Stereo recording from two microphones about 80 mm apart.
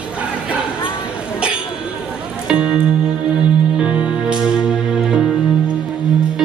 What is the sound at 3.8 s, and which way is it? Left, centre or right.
Music, centre.